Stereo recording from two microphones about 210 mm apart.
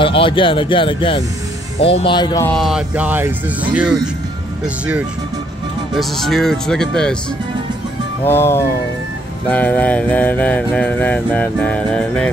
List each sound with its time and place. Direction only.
0.0 s speech: 25° left (ahead or behind)
2.4 s speech: centre (ahead or behind)
5.9 s speech: centre (ahead or behind)
8.2 s a sound: 10° left (ahead or behind)